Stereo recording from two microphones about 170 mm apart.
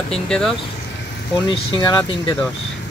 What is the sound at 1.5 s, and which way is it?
Speech, 25° left (ahead or behind).